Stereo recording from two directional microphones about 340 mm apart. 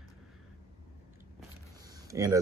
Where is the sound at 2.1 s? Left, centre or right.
Centre.